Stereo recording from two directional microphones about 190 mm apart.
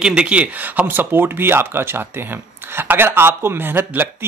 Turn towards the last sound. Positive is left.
turn(degrees=-10)  # may be behind; listen again after turning